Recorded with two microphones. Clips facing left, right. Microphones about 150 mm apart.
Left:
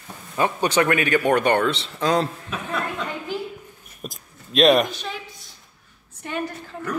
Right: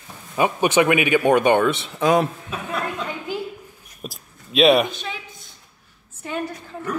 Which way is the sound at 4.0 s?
5° right (ahead or behind).